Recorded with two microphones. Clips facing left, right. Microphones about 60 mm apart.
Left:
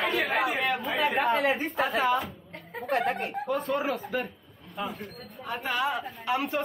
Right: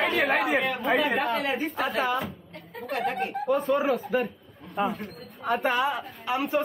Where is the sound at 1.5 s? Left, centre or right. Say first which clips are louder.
Left 1 dB; left.